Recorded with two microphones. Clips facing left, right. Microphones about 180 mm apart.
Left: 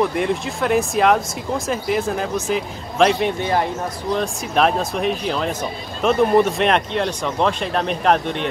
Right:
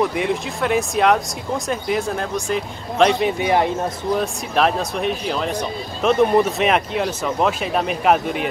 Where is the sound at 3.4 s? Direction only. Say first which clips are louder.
Right 2 dB; 20° right (ahead or behind).